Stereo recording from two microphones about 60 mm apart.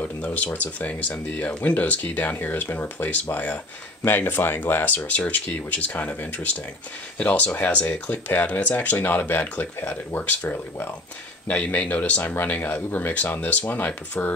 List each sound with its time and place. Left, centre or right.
0.0 s speech: left